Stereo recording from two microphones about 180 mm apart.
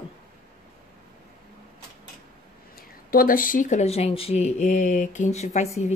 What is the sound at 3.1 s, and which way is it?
Speech, 50° left (ahead or behind).